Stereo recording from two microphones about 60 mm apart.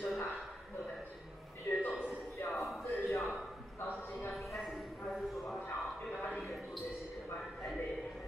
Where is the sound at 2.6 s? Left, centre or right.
Centre.